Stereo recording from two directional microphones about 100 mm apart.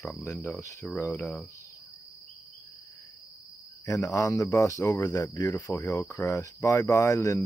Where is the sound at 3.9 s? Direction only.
30° left (ahead or behind).